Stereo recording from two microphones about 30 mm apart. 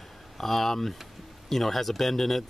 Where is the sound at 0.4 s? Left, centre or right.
Centre.